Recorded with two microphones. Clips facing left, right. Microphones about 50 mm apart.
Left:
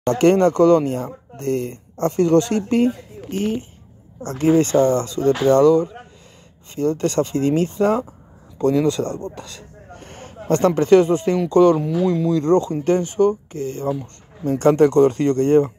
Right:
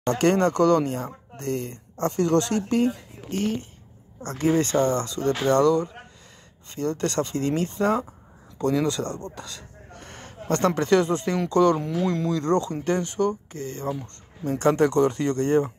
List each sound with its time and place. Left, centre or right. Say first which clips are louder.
0.1 s speech: left 6 dB; left
4.3 s speech: left 6 dB; left
7.0 s speech: left 6 dB; left
8.5 s speech: left 6 dB; left
11.8 s speech: left 6 dB; centre; by 15.7 s left